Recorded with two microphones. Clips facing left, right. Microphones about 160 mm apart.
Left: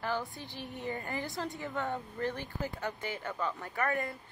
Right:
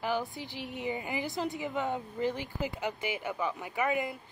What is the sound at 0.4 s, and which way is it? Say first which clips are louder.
Speech: right 3 dB; 90° right.